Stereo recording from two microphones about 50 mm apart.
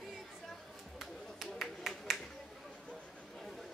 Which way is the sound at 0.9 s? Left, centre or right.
Centre.